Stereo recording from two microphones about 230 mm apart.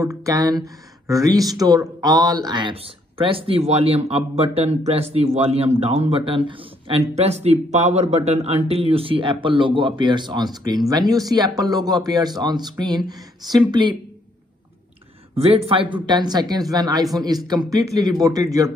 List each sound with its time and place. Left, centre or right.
0.0 s speech: centre
15.3 s speech: right